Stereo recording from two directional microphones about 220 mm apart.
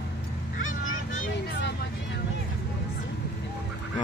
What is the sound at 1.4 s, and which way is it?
Vehicle, 50° left (ahead or behind).